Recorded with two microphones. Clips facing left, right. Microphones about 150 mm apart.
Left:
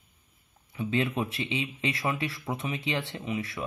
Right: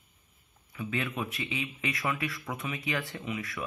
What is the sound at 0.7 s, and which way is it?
Speech, 25° left (ahead or behind).